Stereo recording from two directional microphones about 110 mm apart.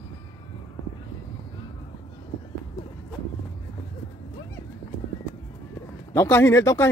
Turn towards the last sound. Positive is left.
turn(degrees=25)  # may be behind; listen again after turning